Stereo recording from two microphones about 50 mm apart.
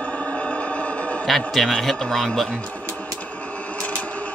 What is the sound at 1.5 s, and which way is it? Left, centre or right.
Speech, centre.